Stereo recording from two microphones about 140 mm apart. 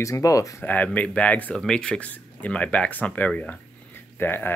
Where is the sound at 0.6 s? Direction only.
10° left (ahead or behind).